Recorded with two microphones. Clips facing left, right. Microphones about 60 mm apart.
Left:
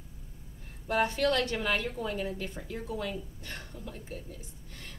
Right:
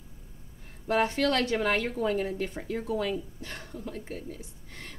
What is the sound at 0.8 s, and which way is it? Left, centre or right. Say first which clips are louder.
A woman's voice: right 2 dB; right.